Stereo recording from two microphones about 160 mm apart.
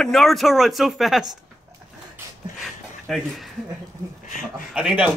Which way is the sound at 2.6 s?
Centre (ahead or behind).